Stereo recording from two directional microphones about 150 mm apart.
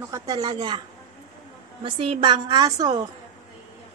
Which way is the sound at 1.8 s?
35° right (ahead or behind).